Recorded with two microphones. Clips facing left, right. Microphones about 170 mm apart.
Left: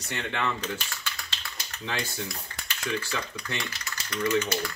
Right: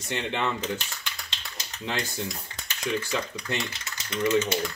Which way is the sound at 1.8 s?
15° right (ahead or behind).